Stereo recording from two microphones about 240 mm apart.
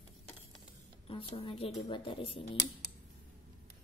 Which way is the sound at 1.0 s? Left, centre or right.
Left.